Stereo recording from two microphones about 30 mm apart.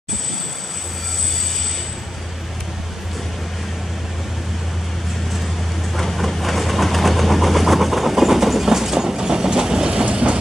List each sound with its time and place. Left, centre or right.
5.9 s train: centre; by 10.0 s right
10.0 s train: right